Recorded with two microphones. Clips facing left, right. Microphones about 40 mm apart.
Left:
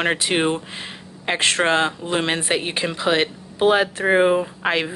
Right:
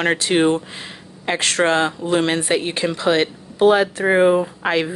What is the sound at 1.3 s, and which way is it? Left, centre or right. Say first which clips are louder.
Speech: right 1 dB; left.